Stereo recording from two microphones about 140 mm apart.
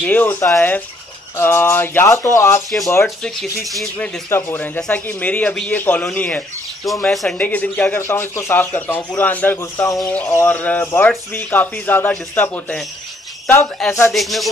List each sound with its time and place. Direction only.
0.0 s speech: 15° left (ahead or behind)
3.7 s speech: centre (ahead or behind)
4.3 s speech: 15° left (ahead or behind)
13.8 s speech: centre (ahead or behind)